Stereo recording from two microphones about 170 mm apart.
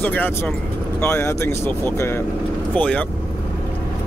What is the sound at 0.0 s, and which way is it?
Speech, 10° left (ahead or behind).